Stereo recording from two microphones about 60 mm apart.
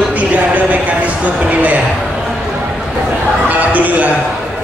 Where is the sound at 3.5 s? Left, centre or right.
Right.